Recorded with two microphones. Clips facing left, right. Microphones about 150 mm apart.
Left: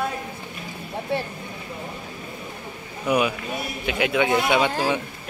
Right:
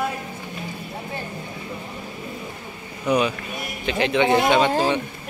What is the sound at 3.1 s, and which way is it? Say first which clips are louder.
Speech: right 1 dB; 10° left (ahead or behind).